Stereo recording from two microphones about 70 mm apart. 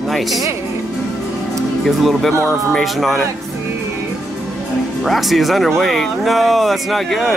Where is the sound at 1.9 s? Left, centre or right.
Centre.